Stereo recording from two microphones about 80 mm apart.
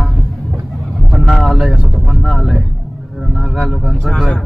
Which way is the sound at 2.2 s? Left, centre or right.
Centre.